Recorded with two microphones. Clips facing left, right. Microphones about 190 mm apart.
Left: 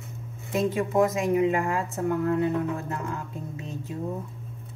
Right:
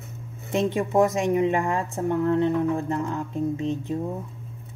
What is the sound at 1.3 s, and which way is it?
Speech, 30° right (ahead or behind).